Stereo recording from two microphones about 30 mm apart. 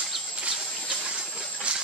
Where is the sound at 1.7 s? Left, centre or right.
Right.